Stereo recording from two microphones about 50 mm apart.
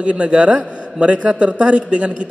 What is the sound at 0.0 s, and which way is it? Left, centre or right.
A man's voice, right.